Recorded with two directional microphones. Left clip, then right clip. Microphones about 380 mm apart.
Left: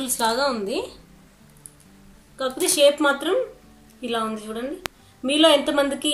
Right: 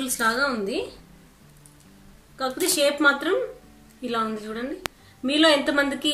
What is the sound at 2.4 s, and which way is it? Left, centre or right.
A woman's voice, centre.